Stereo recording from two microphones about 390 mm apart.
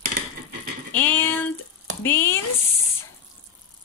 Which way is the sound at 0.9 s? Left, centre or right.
Centre.